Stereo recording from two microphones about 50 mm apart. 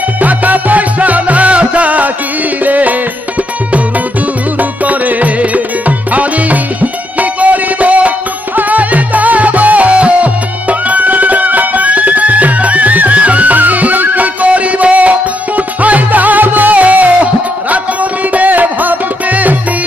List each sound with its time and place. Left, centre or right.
0.2 s music: right
4.6 s music: right